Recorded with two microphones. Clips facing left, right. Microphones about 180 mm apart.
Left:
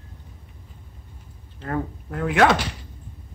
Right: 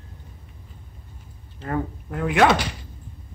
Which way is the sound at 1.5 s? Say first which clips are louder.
Right 1 dB; 5° right (ahead or behind).